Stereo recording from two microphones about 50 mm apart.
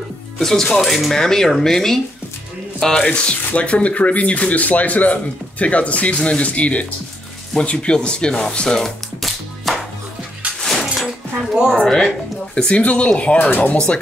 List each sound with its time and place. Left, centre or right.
0.4 s speech: centre
10.6 s a sound: centre
11.1 s a sound: centre
11.7 s speech: centre
12.5 s speech: left
13.5 s speech: left